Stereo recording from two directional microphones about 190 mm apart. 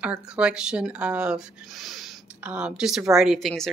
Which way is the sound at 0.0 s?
5° right (ahead or behind).